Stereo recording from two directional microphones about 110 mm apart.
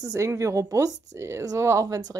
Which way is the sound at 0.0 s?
30° right (ahead or behind).